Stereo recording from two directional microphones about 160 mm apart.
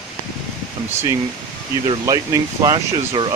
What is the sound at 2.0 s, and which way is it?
Speech, 20° right (ahead or behind).